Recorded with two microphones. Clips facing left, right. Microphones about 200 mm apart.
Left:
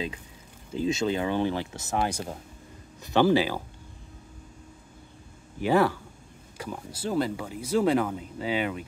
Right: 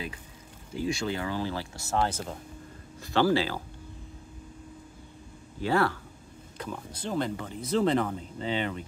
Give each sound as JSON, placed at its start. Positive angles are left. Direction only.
{"t": 0.7, "sound": "speech", "side_deg": 20}
{"t": 5.6, "sound": "speech", "side_deg": 15}